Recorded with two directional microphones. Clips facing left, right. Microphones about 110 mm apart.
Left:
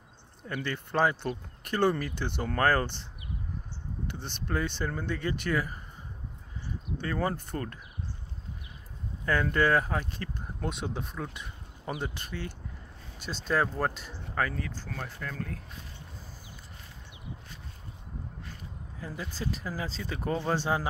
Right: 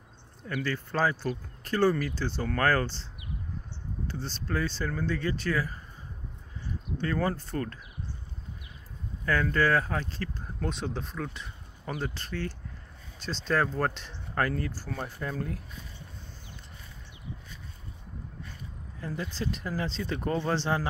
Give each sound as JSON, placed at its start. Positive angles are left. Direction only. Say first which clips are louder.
{"t": 0.4, "sound": "speech", "louder": "right 2 dB", "side_deg": 20}
{"t": 4.1, "sound": "speech", "louder": "right 1 dB", "side_deg": 20}
{"t": 7.0, "sound": "speech", "louder": "right 2 dB", "side_deg": 15}
{"t": 9.2, "sound": "speech", "louder": "even", "side_deg": 20}
{"t": 18.9, "sound": "speech", "louder": "right 3 dB", "side_deg": 10}